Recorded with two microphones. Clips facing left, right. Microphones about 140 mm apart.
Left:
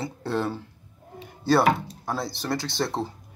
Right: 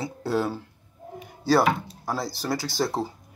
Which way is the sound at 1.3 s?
Centre (ahead or behind).